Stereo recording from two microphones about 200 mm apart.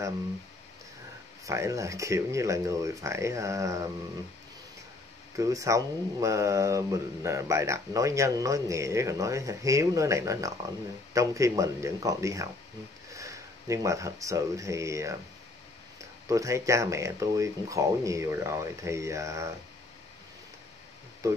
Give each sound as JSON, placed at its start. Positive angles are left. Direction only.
{"t": 1.4, "sound": "speech", "side_deg": -15}
{"t": 5.4, "sound": "speech", "side_deg": -15}
{"t": 16.3, "sound": "speech", "side_deg": -15}